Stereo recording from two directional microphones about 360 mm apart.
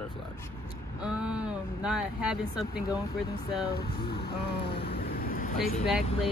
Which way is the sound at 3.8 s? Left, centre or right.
Centre.